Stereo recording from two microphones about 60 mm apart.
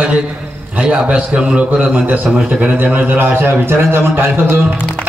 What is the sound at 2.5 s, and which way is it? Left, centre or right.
Speech, centre.